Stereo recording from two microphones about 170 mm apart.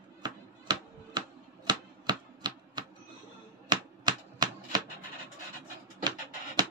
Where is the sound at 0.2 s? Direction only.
25° right (ahead or behind).